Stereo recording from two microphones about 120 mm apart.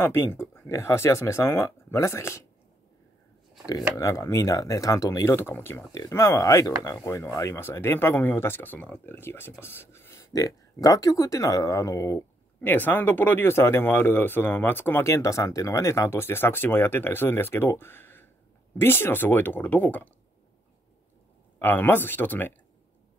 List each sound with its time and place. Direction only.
0.0 s speech: 20° left (ahead or behind)
3.6 s speech: 30° left (ahead or behind)
21.5 s speech: 15° left (ahead or behind)